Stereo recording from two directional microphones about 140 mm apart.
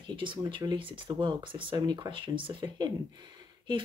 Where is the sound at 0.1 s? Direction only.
35° right (ahead or behind).